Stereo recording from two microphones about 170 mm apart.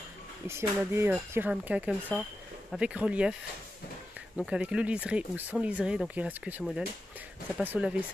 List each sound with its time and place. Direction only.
0.5 s speech: 15° right (ahead or behind)
4.4 s speech: 5° right (ahead or behind)